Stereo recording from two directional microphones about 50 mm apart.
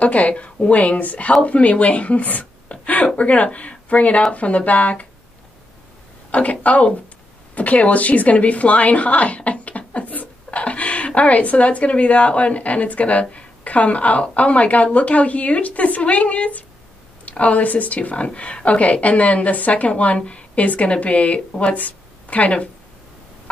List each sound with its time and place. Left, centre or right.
0.0 s speech: left
6.3 s speech: left